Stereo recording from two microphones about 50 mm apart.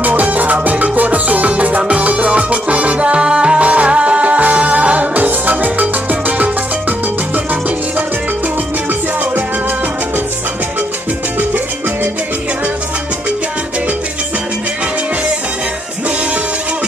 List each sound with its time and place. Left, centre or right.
0.0 s music: right
11.3 s music: right